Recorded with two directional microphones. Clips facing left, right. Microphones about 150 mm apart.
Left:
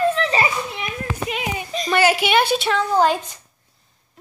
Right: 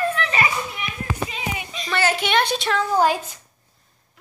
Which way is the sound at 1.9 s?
10° left (ahead or behind).